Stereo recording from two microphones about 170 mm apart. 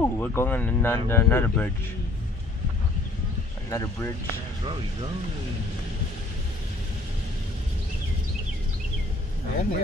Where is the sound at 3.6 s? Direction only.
20° left (ahead or behind).